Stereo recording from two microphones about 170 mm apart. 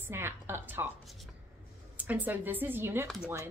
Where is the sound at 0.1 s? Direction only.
15° right (ahead or behind).